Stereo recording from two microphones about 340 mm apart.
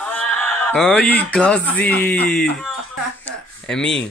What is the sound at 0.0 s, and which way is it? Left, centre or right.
Speech, centre.